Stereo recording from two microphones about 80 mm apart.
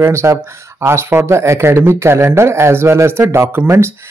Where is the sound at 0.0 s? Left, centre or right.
Right.